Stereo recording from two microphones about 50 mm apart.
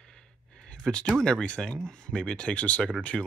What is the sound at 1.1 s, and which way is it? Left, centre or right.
Speech, centre.